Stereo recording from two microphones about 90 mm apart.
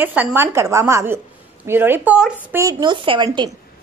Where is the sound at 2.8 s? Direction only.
70° right (ahead or behind).